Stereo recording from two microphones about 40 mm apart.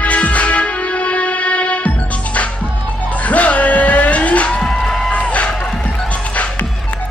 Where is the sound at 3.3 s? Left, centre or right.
Left.